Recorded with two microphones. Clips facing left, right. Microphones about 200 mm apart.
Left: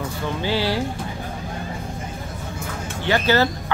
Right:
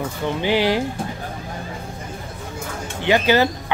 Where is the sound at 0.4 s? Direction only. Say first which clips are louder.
Right 4 dB; 15° right (ahead or behind).